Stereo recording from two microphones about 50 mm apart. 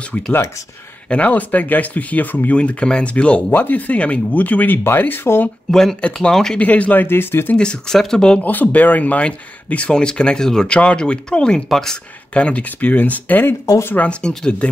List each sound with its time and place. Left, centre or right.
1.0 s speech: left
4.8 s speech: left
5.7 s speech: centre
6.6 s speech: left
7.5 s speech: centre
8.4 s speech: left; by 12.0 s centre
12.4 s speech: left
12.6 s speech: left
13.5 s speech: left
13.9 s speech: left